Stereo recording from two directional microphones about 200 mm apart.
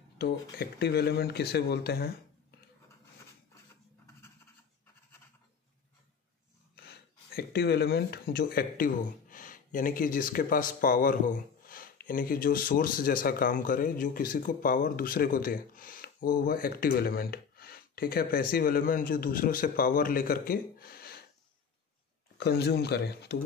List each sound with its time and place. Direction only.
0.2 s speech: 55° left (ahead or behind)
6.7 s speech: 55° left (ahead or behind)
22.4 s speech: 55° left (ahead or behind)